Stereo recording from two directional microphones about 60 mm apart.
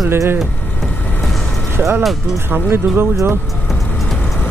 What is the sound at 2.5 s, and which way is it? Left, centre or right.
Speech, right.